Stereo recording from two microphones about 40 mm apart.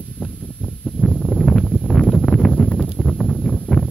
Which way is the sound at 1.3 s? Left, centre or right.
Centre.